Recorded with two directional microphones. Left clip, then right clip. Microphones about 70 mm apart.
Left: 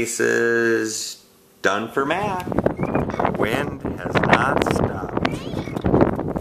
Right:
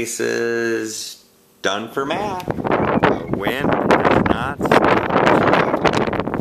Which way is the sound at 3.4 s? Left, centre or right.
Centre.